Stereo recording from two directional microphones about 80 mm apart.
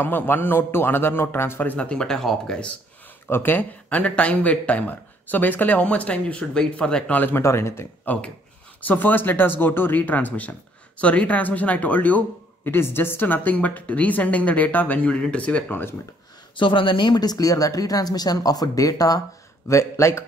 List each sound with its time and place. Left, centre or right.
0.0 s speech: left
3.3 s speech: left; by 7.2 s centre
7.2 s speech: left
7.4 s speech: left
8.0 s speech: left
16.5 s speech: left
19.7 s speech: left